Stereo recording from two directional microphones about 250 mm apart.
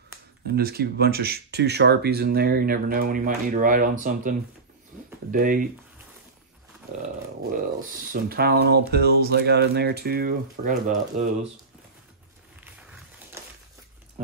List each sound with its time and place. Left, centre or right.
0.5 s speech: right
8.1 s speech: right